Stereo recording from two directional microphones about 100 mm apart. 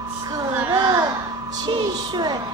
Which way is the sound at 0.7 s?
45° right (ahead or behind).